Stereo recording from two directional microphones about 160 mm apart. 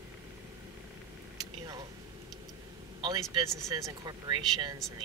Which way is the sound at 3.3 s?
20° right (ahead or behind).